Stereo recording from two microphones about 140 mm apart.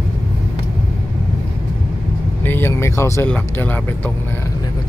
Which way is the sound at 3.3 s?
10° left (ahead or behind).